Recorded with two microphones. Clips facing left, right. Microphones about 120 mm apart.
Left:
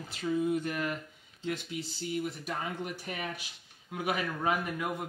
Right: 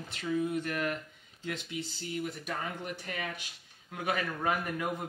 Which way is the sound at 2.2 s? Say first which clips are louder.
Left 1 dB; 15° left (ahead or behind).